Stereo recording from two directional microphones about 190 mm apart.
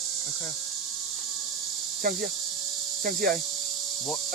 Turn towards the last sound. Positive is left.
turn(degrees=-50)  # may be behind; listen again after turning